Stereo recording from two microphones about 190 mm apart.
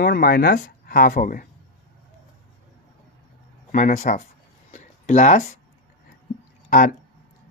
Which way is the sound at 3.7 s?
45° left (ahead or behind).